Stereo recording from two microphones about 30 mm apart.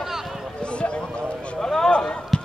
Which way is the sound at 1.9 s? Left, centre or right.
Left.